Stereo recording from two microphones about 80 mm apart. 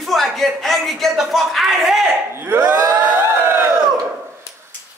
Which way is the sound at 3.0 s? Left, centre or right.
Right.